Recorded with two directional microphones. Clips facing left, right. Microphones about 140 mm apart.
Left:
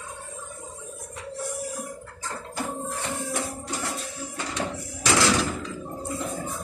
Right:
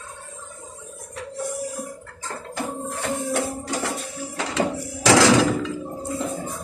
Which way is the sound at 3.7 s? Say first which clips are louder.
Right 5 dB; 90° right.